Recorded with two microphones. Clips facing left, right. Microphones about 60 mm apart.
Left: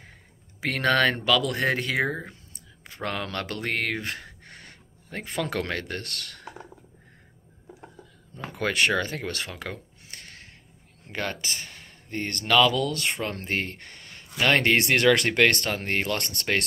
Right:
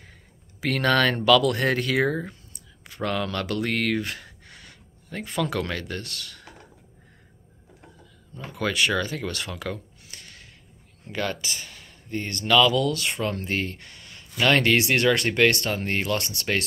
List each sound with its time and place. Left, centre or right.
0.6 s speech: left
2.9 s a sound: left
5.2 s speech: left
8.5 s speech: left
14.9 s speech: left